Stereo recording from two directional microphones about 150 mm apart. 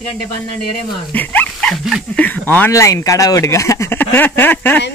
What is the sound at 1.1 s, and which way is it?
Speech, 10° left (ahead or behind).